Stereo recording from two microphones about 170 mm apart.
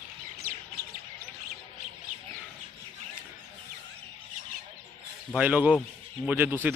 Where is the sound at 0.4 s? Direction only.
60° right (ahead or behind).